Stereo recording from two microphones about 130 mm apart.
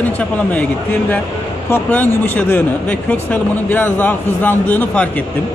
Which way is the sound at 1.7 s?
10° left (ahead or behind).